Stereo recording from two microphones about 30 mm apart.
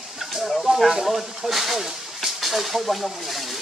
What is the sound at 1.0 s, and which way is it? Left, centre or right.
Speech, centre.